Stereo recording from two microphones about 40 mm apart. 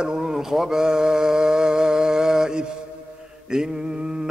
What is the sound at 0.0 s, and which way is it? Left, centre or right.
Speech, centre.